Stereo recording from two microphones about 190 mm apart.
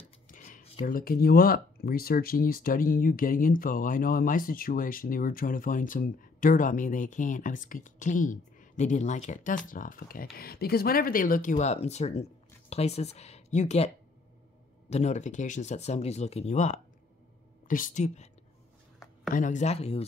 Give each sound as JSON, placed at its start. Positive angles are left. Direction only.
{"t": 0.3, "sound": "speech", "side_deg": 45}
{"t": 19.3, "sound": "speech", "side_deg": 40}